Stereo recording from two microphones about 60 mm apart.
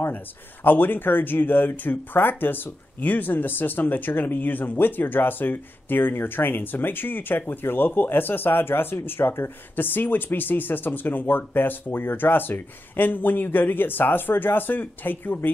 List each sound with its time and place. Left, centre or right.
0.7 s speech: left